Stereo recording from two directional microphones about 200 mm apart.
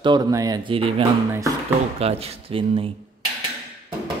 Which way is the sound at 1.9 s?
30° right (ahead or behind).